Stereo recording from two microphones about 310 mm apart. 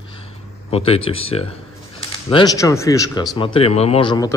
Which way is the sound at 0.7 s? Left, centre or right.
Centre.